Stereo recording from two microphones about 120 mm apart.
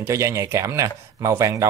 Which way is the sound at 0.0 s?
25° right (ahead or behind).